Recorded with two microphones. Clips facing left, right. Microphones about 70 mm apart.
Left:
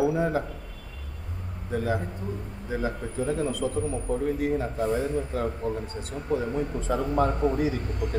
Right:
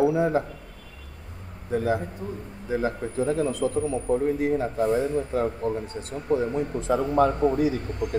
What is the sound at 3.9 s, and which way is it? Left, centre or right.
A man's voice, right.